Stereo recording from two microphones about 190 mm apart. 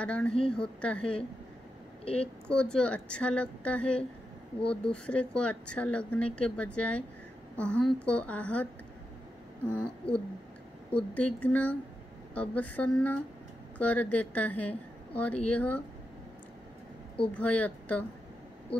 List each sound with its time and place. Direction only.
0.0 s a woman's voice: 5° left (ahead or behind)
2.1 s a woman's voice: 5° left (ahead or behind)
9.8 s a woman's voice: 5° left (ahead or behind)
17.3 s a woman's voice: 10° left (ahead or behind)